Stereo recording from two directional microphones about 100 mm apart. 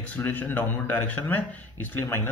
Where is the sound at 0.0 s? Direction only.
15° left (ahead or behind).